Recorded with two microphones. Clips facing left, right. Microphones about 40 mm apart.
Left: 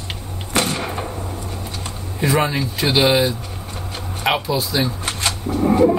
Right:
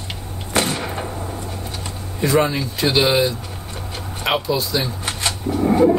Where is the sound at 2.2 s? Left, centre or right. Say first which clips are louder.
Right 1 dB; centre.